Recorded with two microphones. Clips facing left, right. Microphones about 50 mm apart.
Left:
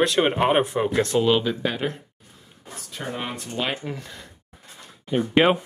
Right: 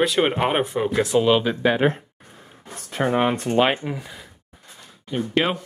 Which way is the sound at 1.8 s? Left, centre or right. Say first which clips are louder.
Right 8 dB; right.